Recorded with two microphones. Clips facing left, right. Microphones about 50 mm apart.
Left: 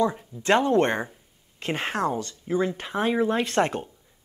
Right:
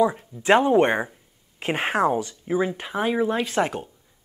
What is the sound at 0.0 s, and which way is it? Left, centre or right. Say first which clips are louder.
Speech: right 3 dB; centre.